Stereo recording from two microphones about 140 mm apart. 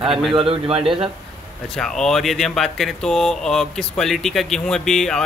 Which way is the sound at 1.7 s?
5° left (ahead or behind).